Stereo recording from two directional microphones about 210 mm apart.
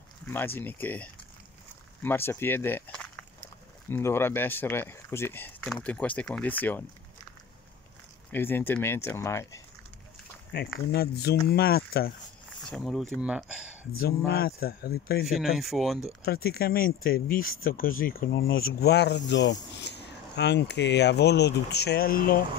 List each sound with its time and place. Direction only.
0.3 s speech: 10° left (ahead or behind)
8.3 s speech: 10° left (ahead or behind)
10.9 s speech: 50° left (ahead or behind)
12.6 s speech: centre (ahead or behind)
13.9 s speech: 45° left (ahead or behind)
15.2 s speech: centre (ahead or behind)
16.4 s speech: 45° left (ahead or behind)